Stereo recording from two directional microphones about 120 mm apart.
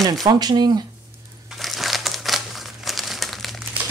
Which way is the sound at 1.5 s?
Centre (ahead or behind).